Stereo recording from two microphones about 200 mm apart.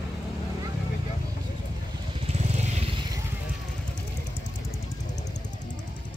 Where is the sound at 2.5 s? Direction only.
35° right (ahead or behind).